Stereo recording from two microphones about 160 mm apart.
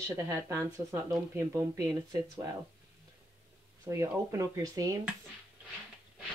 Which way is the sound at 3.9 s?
20° right (ahead or behind).